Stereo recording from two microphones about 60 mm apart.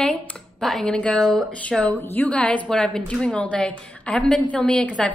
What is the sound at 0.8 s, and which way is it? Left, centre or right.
A woman's voice, centre.